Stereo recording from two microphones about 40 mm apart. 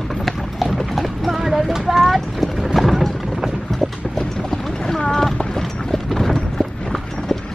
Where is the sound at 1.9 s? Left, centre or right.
Centre.